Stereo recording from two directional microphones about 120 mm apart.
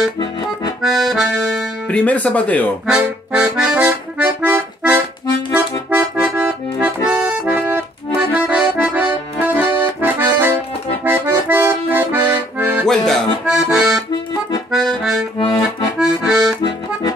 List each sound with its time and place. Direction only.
0.8 s accordion: centre (ahead or behind)
1.9 s speech: 10° left (ahead or behind)
2.9 s accordion: 5° right (ahead or behind)
12.8 s accordion: 5° left (ahead or behind)
15.3 s accordion: 40° left (ahead or behind)
16.0 s accordion: 5° right (ahead or behind)